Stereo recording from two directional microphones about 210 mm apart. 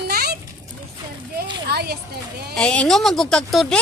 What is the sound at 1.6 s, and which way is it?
Speech, 50° right (ahead or behind).